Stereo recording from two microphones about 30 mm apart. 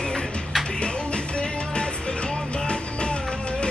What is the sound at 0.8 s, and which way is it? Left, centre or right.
Music, left.